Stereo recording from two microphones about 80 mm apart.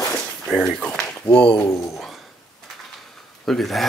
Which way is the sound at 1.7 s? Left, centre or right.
Left.